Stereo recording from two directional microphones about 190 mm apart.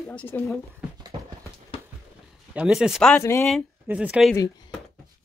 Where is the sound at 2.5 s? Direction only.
5° right (ahead or behind).